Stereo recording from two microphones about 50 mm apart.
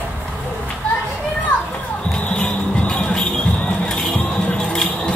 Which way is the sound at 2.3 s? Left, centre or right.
Left.